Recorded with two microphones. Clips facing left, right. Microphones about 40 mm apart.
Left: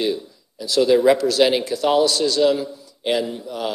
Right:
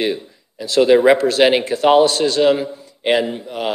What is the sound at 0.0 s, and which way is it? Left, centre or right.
A man's voice, right.